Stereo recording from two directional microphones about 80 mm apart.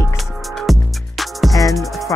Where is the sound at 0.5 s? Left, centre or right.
Centre.